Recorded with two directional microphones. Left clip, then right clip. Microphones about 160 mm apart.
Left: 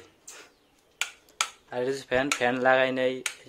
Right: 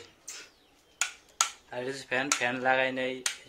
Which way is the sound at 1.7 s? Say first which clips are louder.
Left 5 dB; 75° left (ahead or behind).